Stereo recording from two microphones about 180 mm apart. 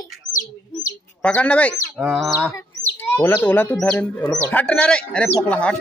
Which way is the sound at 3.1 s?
15° left (ahead or behind).